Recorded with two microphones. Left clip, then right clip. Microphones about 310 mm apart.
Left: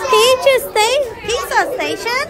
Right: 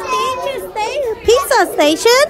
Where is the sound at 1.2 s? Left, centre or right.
Centre.